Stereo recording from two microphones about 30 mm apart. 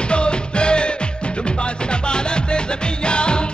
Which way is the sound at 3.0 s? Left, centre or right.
Left.